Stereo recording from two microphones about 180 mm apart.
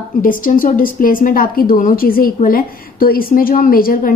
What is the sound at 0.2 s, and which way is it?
A woman's voice, 50° left (ahead or behind).